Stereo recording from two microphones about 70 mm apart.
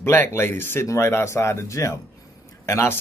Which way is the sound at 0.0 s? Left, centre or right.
Left.